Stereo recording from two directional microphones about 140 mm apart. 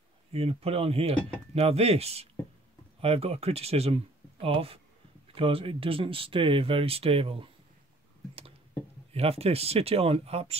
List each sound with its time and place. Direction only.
0.3 s speech: 45° right (ahead or behind)
9.1 s speech: 45° right (ahead or behind)